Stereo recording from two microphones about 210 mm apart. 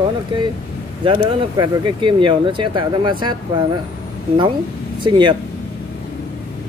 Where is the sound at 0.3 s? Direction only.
25° right (ahead or behind).